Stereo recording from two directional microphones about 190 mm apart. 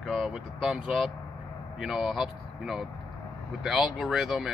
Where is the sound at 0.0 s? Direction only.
Centre (ahead or behind).